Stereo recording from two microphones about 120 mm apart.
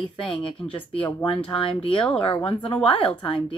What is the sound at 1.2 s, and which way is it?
Speech, 45° left (ahead or behind).